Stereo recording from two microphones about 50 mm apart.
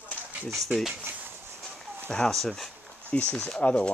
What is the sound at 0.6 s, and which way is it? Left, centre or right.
Speech, centre.